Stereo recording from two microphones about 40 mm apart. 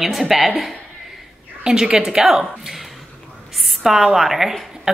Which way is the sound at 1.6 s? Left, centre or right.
Centre.